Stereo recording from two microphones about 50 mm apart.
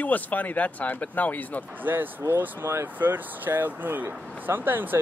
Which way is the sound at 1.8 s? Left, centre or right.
Right.